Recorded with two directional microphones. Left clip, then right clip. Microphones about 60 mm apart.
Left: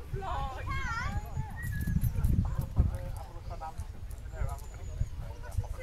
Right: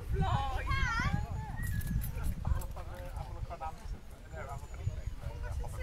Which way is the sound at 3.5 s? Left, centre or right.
Right.